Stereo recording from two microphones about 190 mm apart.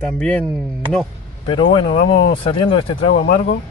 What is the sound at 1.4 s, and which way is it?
Speech, 25° left (ahead or behind).